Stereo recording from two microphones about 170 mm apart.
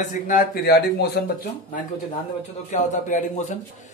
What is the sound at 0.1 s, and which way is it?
Speech, 50° left (ahead or behind).